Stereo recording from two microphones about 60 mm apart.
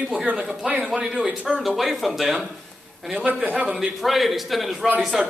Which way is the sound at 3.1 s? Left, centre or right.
Right.